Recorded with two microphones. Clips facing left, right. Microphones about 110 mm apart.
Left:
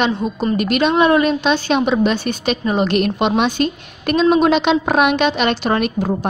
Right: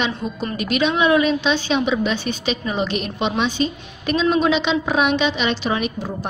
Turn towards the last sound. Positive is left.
turn(degrees=55)  # may be behind; listen again after turning